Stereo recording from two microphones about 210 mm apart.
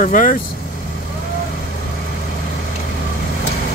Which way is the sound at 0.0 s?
40° left (ahead or behind).